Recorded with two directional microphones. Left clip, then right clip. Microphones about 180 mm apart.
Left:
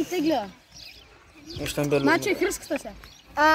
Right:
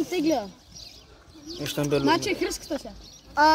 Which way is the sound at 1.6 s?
Centre (ahead or behind).